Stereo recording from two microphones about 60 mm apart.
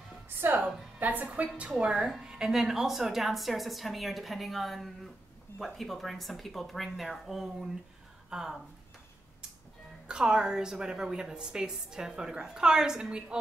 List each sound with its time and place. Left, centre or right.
0.9 s a woman's voice: right
1.2 s a woman's voice: centre
10.0 s a woman's voice: centre